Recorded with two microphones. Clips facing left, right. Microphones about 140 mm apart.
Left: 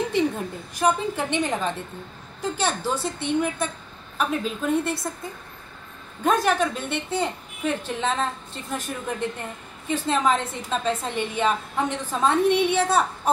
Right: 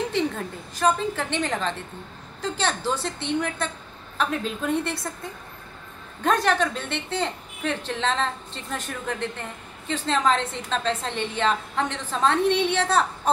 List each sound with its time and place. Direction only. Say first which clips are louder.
0.7 s a woman's voice: even; 15° left (ahead or behind)
6.2 s a woman's voice: left 1 dB; 5° left (ahead or behind)